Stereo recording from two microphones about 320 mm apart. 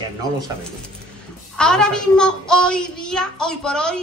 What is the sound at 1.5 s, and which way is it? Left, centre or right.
A woman's voice, centre.